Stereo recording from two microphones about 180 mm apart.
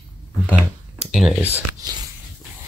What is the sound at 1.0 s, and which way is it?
Speech, centre (ahead or behind).